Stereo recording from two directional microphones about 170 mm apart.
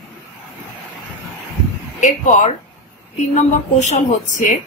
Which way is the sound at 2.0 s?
45° left (ahead or behind).